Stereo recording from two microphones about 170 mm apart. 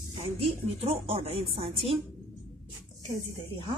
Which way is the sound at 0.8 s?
35° right (ahead or behind).